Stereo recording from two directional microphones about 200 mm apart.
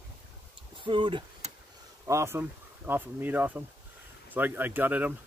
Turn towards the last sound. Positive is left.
turn(degrees=-10)  # may be behind; listen again after turning